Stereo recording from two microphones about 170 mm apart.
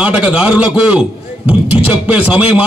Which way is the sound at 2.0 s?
10° right (ahead or behind).